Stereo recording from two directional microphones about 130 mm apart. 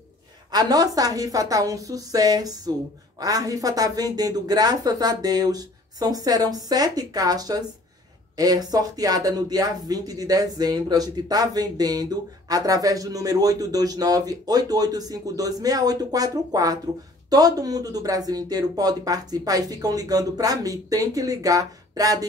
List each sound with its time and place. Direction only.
0.5 s speech: 30° right (ahead or behind)